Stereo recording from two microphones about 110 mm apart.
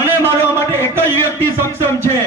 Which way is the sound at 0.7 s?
20° left (ahead or behind).